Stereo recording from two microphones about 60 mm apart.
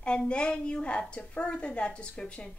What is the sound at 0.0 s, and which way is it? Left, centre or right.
A woman's voice, centre.